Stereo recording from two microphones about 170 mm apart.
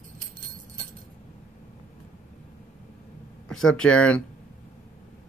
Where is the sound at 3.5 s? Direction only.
5° left (ahead or behind).